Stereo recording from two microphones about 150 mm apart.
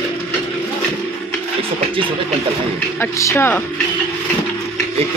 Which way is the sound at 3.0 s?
20° left (ahead or behind).